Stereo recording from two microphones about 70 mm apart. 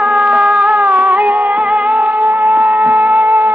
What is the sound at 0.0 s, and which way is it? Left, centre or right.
Music, centre.